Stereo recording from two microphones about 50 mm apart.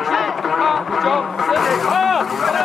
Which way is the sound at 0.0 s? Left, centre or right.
Centre.